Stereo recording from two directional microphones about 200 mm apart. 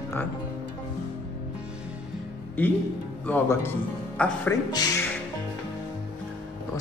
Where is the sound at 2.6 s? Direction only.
10° left (ahead or behind).